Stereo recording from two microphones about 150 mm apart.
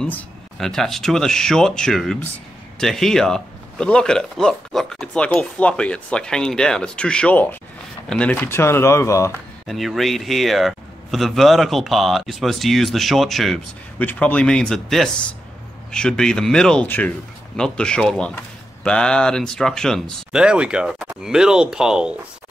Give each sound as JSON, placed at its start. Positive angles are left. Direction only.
{"t": 0.0, "sound": "speech", "side_deg": 5}
{"t": 9.7, "sound": "speech", "side_deg": 0}